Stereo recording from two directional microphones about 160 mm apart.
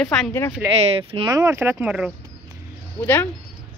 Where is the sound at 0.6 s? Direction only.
15° right (ahead or behind).